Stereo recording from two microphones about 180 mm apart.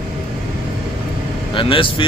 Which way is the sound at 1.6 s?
30° left (ahead or behind).